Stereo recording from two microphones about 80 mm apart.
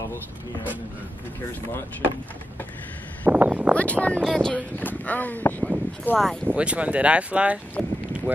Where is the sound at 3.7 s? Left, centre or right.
Centre.